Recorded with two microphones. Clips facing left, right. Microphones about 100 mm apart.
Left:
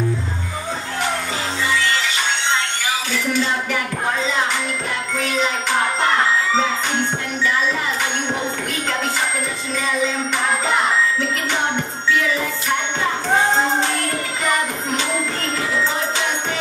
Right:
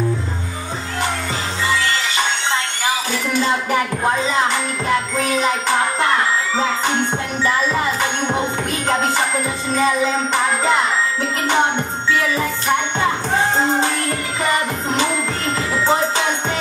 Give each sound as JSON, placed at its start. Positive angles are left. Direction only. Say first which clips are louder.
{"t": 3.1, "sound": "music", "louder": "even", "side_deg": -40}
{"t": 9.8, "sound": "music", "louder": "right 4 dB", "side_deg": -40}